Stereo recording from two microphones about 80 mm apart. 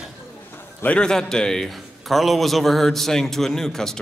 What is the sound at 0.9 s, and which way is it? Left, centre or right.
A man's voice, centre.